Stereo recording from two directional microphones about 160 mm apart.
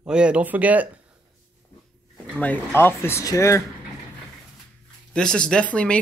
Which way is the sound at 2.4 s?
15° left (ahead or behind).